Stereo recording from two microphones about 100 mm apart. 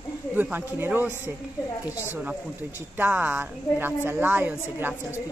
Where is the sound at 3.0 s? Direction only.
15° right (ahead or behind).